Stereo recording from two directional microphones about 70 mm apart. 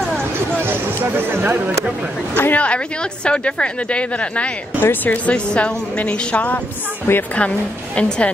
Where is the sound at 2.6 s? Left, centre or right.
Centre.